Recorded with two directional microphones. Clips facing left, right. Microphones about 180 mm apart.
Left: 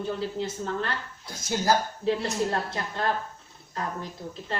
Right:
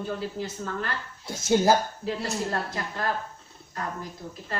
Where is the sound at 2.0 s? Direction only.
25° left (ahead or behind).